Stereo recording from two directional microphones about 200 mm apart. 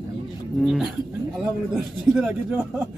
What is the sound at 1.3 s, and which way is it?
A man's voice, 5° right (ahead or behind).